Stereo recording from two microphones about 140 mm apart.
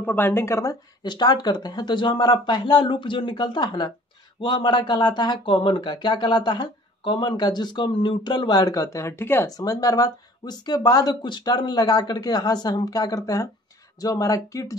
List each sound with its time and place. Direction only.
0.0 s speech: 15° left (ahead or behind)